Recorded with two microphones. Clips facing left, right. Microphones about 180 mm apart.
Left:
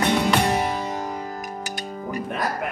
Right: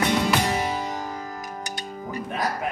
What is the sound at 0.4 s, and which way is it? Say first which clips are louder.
Music: left 3 dB; 60° left (ahead or behind).